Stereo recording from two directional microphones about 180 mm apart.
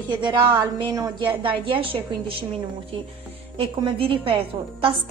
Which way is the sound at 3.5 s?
30° right (ahead or behind).